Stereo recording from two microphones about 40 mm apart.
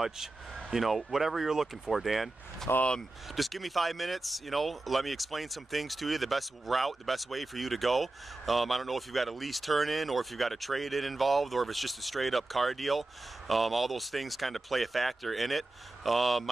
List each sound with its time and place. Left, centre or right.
0.7 s speech: centre
2.7 s speech: left
3.3 s speech: centre